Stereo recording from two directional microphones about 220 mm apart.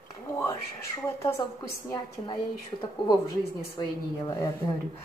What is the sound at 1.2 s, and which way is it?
A woman's voice, 10° left (ahead or behind).